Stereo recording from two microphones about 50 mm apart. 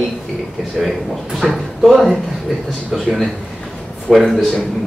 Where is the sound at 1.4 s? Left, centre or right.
Centre.